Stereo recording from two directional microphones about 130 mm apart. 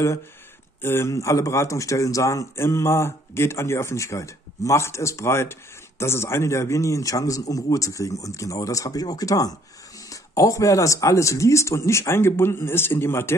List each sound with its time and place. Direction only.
0.8 s a man's voice: 20° left (ahead or behind)